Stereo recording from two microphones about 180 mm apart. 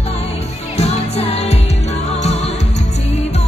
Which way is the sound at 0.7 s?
35° left (ahead or behind).